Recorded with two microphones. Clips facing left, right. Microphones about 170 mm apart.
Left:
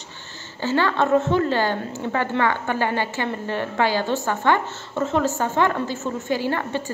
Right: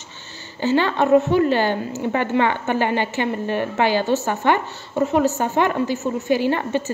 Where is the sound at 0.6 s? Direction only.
15° right (ahead or behind).